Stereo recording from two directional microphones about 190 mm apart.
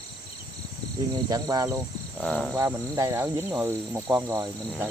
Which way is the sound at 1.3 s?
20° right (ahead or behind).